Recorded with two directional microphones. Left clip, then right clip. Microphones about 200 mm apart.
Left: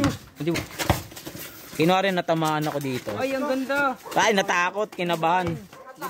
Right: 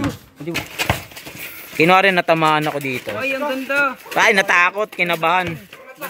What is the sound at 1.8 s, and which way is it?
Speech, 10° right (ahead or behind).